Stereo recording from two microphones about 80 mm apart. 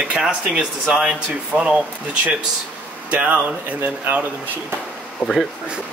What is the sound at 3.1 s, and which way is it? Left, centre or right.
Speech, centre.